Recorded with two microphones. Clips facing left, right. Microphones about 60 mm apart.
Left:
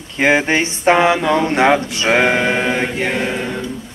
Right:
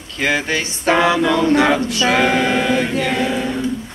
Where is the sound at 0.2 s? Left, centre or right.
Left.